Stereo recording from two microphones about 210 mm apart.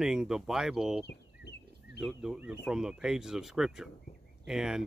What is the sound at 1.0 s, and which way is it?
Bird, 50° left (ahead or behind).